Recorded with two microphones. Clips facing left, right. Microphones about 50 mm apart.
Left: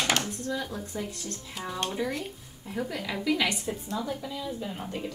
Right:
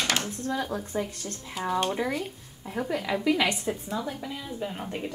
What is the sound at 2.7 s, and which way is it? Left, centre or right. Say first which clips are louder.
Speech: right 4 dB; centre.